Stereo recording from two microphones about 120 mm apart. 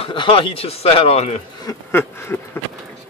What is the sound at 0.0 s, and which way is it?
A man's voice, 45° left (ahead or behind).